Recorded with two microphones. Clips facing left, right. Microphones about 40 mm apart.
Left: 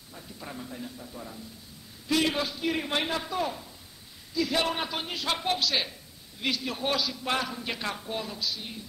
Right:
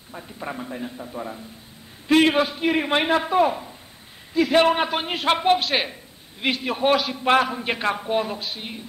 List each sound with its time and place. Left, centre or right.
0.1 s a man's voice: right